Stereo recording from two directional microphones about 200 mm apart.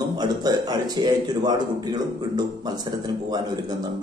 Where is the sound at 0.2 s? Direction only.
20° right (ahead or behind).